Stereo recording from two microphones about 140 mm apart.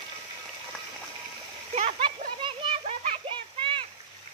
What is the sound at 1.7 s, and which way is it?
Splash, 40° right (ahead or behind).